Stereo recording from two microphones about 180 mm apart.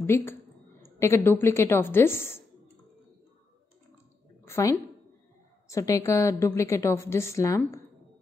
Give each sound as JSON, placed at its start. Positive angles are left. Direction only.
{"t": 0.0, "sound": "a woman's voice", "side_deg": 10}
{"t": 4.5, "sound": "a woman's voice", "side_deg": 15}